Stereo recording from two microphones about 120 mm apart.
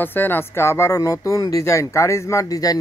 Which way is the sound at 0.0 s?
15° left (ahead or behind).